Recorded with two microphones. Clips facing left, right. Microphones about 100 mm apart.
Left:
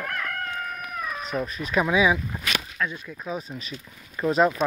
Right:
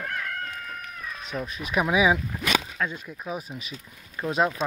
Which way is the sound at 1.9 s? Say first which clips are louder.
Right 2 dB; 20° right (ahead or behind).